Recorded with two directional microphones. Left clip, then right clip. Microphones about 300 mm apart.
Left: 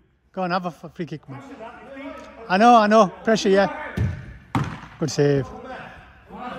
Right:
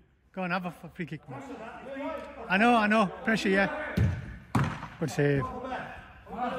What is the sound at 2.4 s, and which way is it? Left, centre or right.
A man's voice, centre.